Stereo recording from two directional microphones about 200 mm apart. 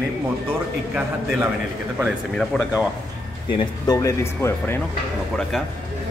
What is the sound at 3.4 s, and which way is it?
Speech, 20° left (ahead or behind).